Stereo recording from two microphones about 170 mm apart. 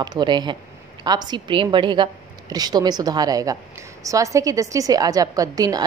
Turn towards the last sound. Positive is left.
turn(degrees=-20)  # may be behind; listen again after turning